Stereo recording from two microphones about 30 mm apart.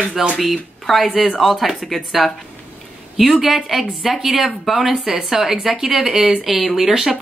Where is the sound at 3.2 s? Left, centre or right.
Centre.